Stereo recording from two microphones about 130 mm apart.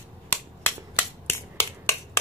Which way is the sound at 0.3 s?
20° left (ahead or behind).